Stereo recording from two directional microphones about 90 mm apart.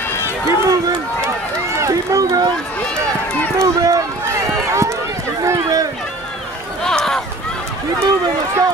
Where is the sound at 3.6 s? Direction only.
35° right (ahead or behind).